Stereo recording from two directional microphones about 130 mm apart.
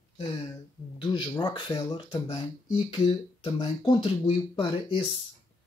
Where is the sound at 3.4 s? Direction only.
40° left (ahead or behind).